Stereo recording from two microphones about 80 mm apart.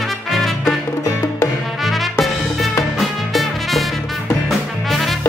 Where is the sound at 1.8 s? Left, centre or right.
Centre.